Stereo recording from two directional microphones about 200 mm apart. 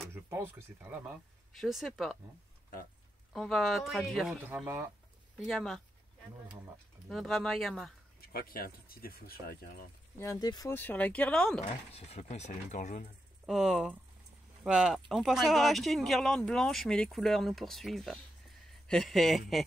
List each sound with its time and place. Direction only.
0.1 s speech: 10° right (ahead or behind)
3.3 s speech: centre (ahead or behind)
5.4 s speech: centre (ahead or behind)
7.1 s speech: centre (ahead or behind)
8.3 s speech: 50° left (ahead or behind)
10.2 s speech: 20° left (ahead or behind)
11.9 s speech: 30° left (ahead or behind)
13.5 s speech: centre (ahead or behind)